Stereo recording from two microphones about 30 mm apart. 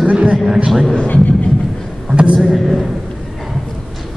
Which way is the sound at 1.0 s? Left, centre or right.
Left.